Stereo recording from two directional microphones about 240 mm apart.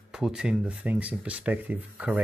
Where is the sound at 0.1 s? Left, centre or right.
Centre.